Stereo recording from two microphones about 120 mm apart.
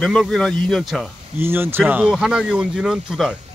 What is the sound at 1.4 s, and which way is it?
Speech, 20° right (ahead or behind).